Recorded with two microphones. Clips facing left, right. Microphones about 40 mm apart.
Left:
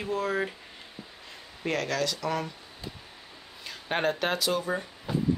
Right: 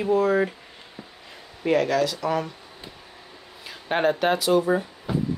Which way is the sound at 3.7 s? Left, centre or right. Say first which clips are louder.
Right 5 dB; centre.